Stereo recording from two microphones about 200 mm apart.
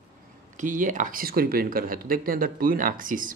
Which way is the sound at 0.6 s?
40° right (ahead or behind).